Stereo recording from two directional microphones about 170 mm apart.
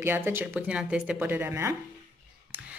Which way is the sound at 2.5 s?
10° right (ahead or behind).